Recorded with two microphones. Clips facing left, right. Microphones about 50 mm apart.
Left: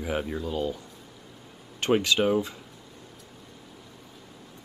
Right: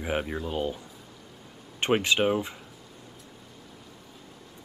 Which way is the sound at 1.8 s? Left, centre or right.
Right.